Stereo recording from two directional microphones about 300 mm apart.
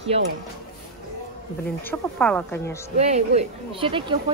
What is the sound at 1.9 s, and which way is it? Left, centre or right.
Speech, centre.